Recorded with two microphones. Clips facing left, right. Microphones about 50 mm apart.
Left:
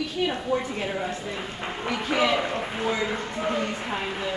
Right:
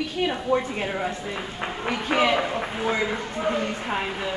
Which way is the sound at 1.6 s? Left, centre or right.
Right.